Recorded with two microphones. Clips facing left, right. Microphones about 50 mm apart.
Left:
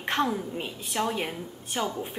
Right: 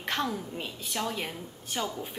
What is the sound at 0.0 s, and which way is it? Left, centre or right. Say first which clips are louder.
A woman's voice: left 4 dB; left.